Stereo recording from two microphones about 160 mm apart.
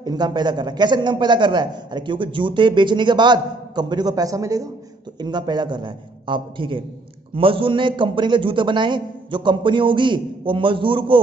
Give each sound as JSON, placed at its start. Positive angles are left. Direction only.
{"t": 0.0, "sound": "a man's voice", "side_deg": -25}